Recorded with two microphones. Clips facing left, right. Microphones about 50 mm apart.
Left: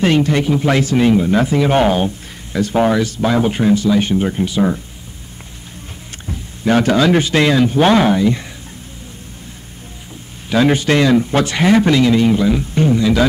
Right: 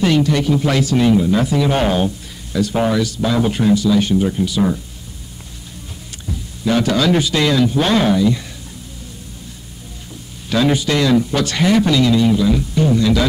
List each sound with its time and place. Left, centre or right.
0.0 s speech: left
6.2 s a sound: left
7.0 s speech: left
10.5 s speech: left
12.9 s speech: left